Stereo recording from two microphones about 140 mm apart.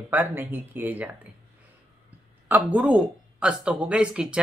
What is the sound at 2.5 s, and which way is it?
Speech, 10° right (ahead or behind).